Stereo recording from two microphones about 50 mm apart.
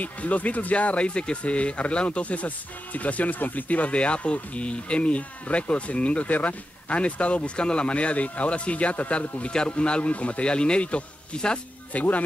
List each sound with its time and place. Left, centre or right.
0.0 s speech: left